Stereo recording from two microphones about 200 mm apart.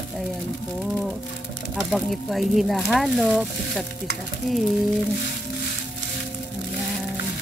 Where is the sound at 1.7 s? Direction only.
Centre (ahead or behind).